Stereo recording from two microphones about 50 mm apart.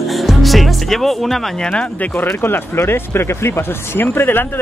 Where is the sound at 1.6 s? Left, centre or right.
Centre.